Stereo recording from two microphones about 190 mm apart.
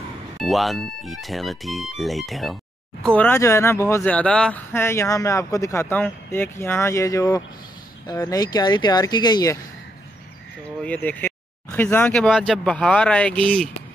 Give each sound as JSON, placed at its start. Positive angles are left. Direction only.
{"t": 0.4, "sound": "speech", "side_deg": 0}
{"t": 10.8, "sound": "speech", "side_deg": 10}